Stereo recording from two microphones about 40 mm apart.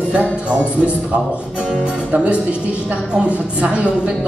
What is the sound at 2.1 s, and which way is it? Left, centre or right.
Speech, right.